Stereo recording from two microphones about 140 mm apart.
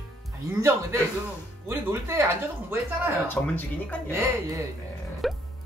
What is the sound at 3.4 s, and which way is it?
Speech, 10° left (ahead or behind).